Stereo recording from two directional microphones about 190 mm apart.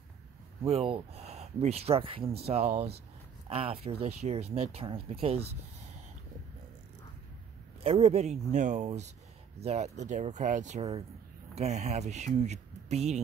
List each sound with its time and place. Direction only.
0.7 s speech: 30° right (ahead or behind)
7.8 s speech: 35° right (ahead or behind)